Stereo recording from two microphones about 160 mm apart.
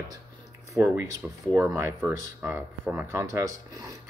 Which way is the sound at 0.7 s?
15° right (ahead or behind).